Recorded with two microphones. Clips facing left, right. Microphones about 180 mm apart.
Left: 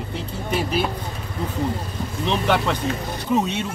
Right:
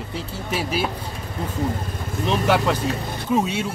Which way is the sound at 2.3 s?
5° right (ahead or behind).